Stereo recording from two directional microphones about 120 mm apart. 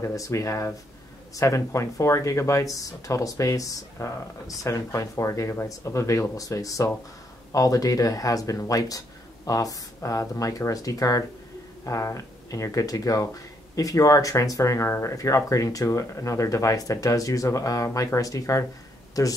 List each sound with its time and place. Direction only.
0.0 s speech: 25° left (ahead or behind)